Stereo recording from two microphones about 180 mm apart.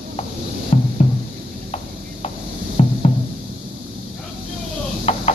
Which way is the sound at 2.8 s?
35° left (ahead or behind).